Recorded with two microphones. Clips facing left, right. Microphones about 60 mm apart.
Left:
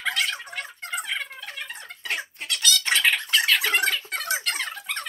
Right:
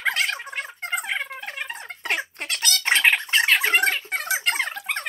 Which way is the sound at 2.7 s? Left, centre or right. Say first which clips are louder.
Right 3 dB; right.